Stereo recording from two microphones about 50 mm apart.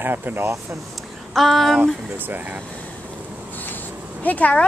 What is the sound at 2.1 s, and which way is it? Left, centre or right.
Speech, right.